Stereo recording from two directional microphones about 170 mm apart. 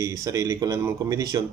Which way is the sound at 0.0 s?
20° right (ahead or behind).